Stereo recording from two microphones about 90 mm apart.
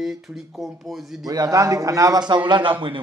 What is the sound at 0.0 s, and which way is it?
Speech, centre (ahead or behind).